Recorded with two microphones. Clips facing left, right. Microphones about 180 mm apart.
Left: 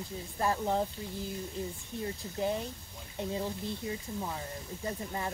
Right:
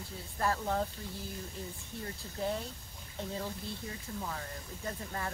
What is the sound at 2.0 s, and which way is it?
Speech, 20° left (ahead or behind).